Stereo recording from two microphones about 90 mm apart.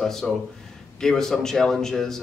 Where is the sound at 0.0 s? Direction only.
5° left (ahead or behind).